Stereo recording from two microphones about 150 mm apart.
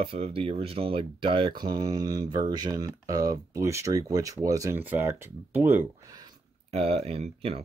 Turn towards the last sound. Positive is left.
turn(degrees=-40)  # may be behind; listen again after turning